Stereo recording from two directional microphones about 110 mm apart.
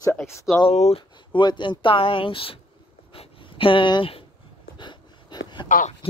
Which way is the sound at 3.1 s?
55° left (ahead or behind).